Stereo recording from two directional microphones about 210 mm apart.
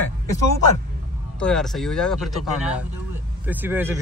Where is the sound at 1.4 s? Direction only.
5° left (ahead or behind).